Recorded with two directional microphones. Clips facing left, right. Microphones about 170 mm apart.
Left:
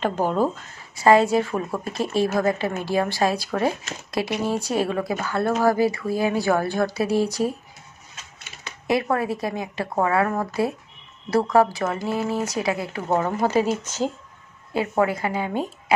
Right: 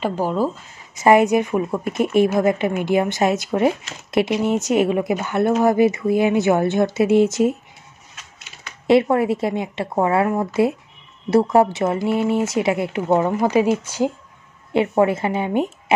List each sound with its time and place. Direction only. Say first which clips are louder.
0.0 s speech: right 1 dB; 5° right (ahead or behind)
0.9 s a woman's voice: right 2 dB; 20° right (ahead or behind)
9.1 s a woman's voice: right 5 dB; 25° right (ahead or behind)
14.7 s a woman's voice: right 5 dB; 25° right (ahead or behind)